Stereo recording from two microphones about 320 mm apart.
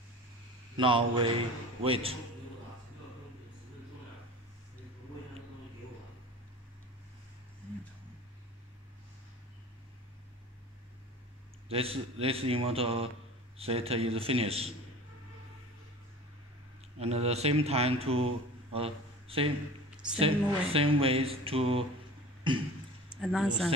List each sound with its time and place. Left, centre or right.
0.7 s speech: centre
11.7 s speech: centre
17.0 s speech: centre
19.9 s a sound: centre
20.2 s speech: centre
23.2 s speech: centre